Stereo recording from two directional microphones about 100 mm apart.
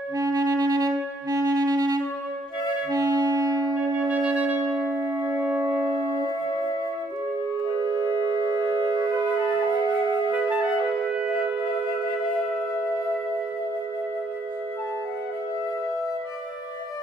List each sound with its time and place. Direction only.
0.2 s music: 35° right (ahead or behind)
4.1 s music: 15° right (ahead or behind)
7.8 s music: 35° right (ahead or behind)
10.0 s flute: 40° right (ahead or behind)
10.3 s clarinet: 15° right (ahead or behind)